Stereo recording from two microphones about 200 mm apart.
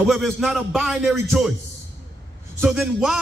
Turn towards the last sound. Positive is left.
turn(degrees=-5)  # may be behind; listen again after turning